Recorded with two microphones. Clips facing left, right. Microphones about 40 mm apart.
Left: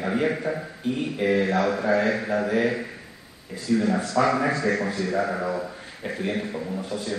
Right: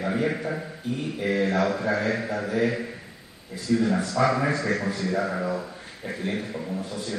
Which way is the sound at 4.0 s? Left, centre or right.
Left.